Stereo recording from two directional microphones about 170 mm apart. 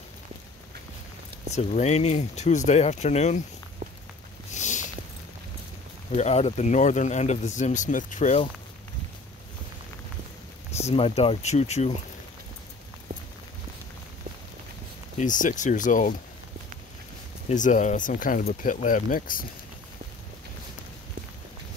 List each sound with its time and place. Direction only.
1.5 s speech: 40° left (ahead or behind)
4.6 s a sound: 45° left (ahead or behind)
6.1 s speech: 40° left (ahead or behind)
10.8 s speech: 40° left (ahead or behind)
15.1 s speech: 50° left (ahead or behind)
17.5 s speech: 45° left (ahead or behind)